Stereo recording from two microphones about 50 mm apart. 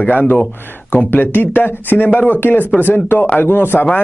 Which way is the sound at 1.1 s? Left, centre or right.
Left.